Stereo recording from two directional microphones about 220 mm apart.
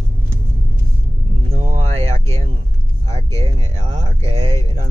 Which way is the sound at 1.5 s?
25° right (ahead or behind).